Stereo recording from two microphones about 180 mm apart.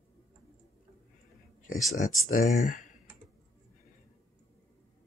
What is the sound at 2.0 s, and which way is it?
Speech, 45° left (ahead or behind).